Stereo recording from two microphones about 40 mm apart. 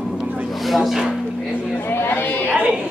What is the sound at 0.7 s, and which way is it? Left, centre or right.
Speech, centre.